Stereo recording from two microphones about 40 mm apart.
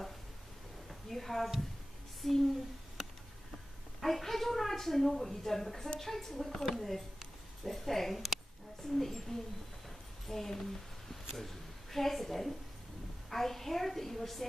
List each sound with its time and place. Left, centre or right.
0.8 s a sound: centre
2.2 s a woman's voice: centre
4.0 s a woman's voice: centre